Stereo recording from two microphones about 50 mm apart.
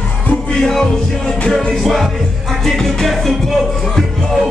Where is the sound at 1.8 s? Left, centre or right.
Centre.